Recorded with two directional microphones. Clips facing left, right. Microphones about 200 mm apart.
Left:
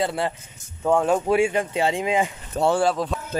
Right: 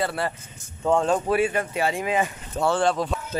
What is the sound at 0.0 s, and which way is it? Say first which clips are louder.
Speech: left 2 dB; 15° left (ahead or behind).